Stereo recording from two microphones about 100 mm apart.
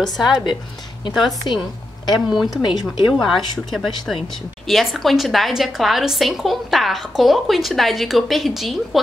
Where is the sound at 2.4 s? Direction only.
45° left (ahead or behind).